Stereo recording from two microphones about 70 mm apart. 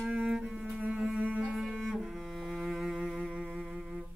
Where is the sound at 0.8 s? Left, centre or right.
Centre.